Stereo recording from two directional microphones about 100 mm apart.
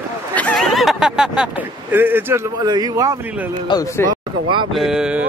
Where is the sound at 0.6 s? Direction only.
Centre (ahead or behind).